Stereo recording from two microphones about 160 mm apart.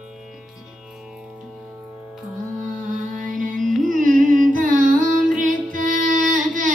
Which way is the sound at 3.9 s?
55° right (ahead or behind).